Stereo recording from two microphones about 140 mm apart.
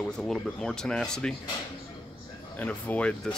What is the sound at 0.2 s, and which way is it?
Speech, 5° left (ahead or behind).